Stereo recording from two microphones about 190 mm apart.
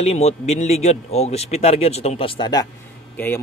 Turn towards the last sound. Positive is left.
turn(degrees=10)  # may be behind; listen again after turning